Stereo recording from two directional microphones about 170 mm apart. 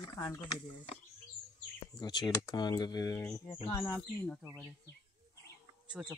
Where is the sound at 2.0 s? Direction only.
25° left (ahead or behind).